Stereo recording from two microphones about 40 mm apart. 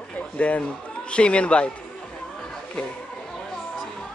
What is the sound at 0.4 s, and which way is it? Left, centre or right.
Speech, left.